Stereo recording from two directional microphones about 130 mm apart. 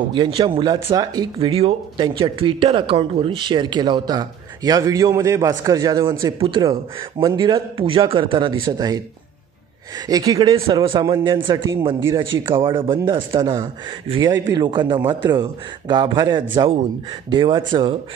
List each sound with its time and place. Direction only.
0.1 s speech: 40° right (ahead or behind)
1.5 s speech: 50° right (ahead or behind)
2.0 s speech: 35° right (ahead or behind)
10.5 s speech: 40° right (ahead or behind)